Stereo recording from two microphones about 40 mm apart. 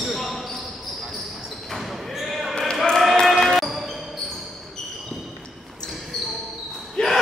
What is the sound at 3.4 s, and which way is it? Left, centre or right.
Music, centre.